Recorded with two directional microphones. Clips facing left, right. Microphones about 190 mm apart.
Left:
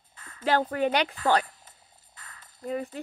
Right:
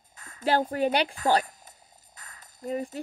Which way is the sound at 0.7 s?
35° right (ahead or behind).